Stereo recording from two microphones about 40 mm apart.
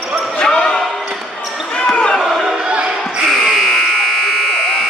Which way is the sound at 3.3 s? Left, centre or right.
Centre.